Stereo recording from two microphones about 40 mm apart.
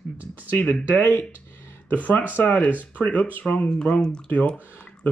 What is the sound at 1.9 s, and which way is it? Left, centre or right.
Speech, left.